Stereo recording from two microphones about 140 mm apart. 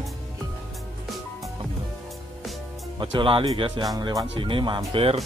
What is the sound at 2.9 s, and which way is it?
Speech, 35° right (ahead or behind).